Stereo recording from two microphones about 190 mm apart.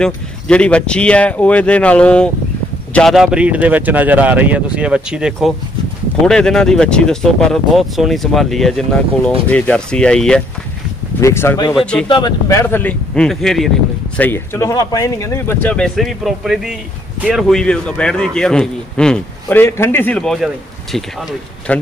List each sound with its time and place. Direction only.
0.0 s a man's voice: 5° left (ahead or behind)
11.7 s a man's voice: 5° left (ahead or behind)
12.1 s a man's voice: 20° left (ahead or behind); by 21.7 s centre (ahead or behind)